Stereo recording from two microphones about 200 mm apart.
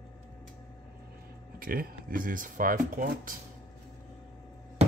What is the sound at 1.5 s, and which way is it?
Speech, 45° right (ahead or behind).